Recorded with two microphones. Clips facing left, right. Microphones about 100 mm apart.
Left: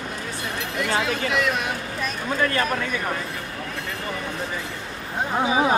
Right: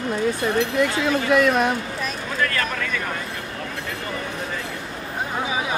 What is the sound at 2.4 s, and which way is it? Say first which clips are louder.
Speech: left 1 dB; 25° left (ahead or behind).